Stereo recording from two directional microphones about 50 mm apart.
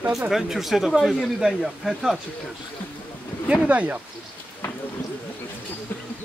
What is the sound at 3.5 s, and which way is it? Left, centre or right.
Speech, right.